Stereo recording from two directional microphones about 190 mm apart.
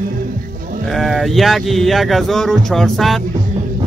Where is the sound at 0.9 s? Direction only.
Centre (ahead or behind).